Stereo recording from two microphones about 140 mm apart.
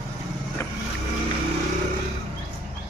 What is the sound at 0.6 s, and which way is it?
Vehicle, 20° left (ahead or behind).